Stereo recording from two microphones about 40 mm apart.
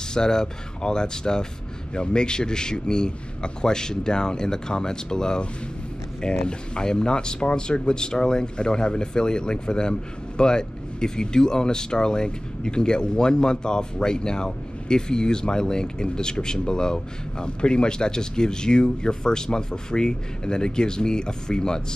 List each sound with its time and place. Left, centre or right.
0.1 s speech: centre